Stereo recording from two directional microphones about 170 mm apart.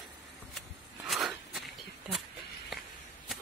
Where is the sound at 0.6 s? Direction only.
Centre (ahead or behind).